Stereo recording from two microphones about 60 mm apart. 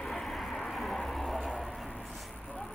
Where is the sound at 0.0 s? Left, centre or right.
Centre.